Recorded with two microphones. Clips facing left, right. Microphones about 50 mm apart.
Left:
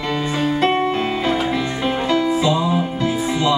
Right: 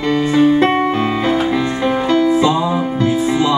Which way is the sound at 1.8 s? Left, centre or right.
Centre.